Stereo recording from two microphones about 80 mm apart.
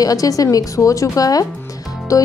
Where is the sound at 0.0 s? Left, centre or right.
Left.